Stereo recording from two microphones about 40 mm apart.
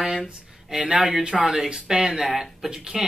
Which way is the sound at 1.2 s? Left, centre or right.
Centre.